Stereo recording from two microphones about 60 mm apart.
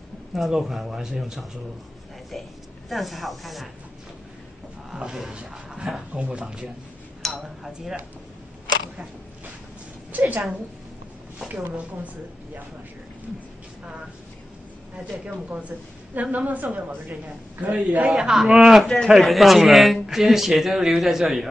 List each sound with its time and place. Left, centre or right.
0.3 s speech: centre
2.9 s a man's voice: centre
4.9 s speech: centre
7.2 s a sound: centre
10.1 s a man's voice: right
16.2 s a man's voice: right
17.9 s a man's voice: centre